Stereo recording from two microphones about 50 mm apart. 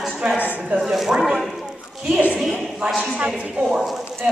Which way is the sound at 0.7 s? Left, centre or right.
Centre.